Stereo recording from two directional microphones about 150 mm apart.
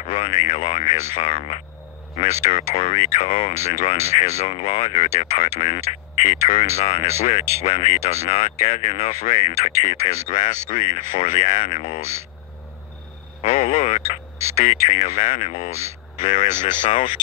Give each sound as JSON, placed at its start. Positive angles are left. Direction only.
{"t": 0.0, "sound": "speech", "side_deg": 50}
{"t": 13.4, "sound": "speech", "side_deg": 50}